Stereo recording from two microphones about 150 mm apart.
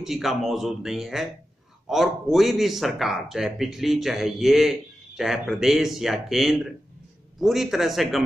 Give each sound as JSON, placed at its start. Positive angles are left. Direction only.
{"t": 0.0, "sound": "a man's voice", "side_deg": 0}